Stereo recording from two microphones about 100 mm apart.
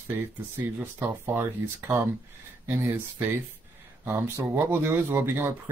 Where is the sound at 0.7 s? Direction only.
20° right (ahead or behind).